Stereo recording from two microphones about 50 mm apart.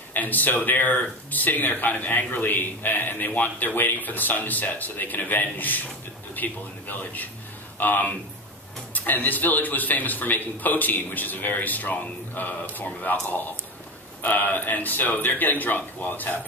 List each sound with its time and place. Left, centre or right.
0.1 s a man's voice: left